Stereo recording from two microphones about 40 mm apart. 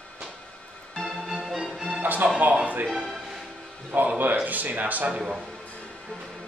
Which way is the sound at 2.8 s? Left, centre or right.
Centre.